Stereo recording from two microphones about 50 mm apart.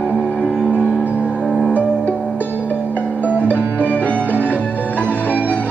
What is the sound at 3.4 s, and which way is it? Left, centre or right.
Music, left.